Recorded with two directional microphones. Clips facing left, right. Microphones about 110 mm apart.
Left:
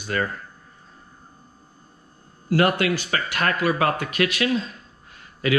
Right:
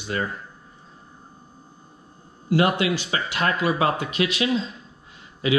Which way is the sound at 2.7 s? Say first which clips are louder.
Left 1 dB; 50° left (ahead or behind).